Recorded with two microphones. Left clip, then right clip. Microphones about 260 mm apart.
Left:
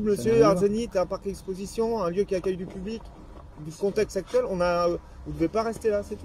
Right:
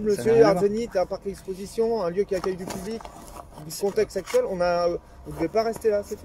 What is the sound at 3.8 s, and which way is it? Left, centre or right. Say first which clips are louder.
Speech: right 1 dB; centre.